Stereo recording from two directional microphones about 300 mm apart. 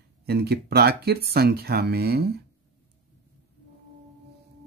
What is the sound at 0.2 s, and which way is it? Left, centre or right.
Speech, right.